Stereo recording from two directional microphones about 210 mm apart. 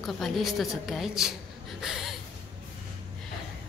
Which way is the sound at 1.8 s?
Centre (ahead or behind).